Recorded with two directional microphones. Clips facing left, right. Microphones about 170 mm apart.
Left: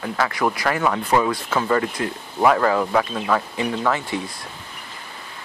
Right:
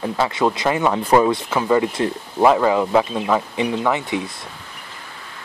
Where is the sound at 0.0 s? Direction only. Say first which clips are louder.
Right 3 dB; 25° right (ahead or behind).